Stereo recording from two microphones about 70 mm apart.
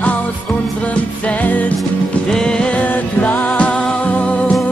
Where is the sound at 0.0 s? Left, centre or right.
Left.